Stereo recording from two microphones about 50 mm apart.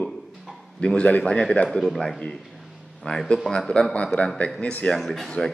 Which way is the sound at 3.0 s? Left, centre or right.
Left.